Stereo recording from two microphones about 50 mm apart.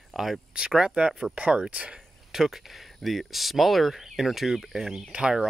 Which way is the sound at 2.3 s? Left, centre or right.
Centre.